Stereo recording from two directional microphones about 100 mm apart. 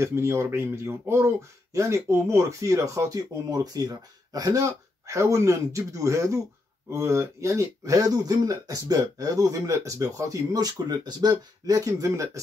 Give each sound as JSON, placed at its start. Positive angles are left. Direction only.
{"t": 0.0, "sound": "speech", "side_deg": -25}